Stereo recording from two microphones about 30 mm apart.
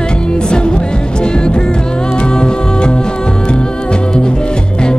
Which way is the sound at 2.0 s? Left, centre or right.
Left.